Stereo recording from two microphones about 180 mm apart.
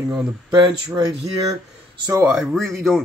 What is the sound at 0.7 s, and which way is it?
Speech, 20° right (ahead or behind).